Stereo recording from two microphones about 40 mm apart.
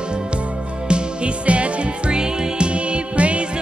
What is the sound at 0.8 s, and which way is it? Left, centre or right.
Music, right.